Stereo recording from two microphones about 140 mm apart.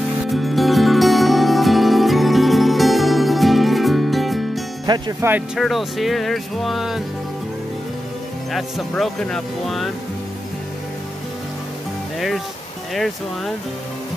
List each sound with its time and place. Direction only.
0.3 s music: centre (ahead or behind)
4.8 s speech: 30° right (ahead or behind)
5.6 s speech: centre (ahead or behind)
8.5 s speech: centre (ahead or behind)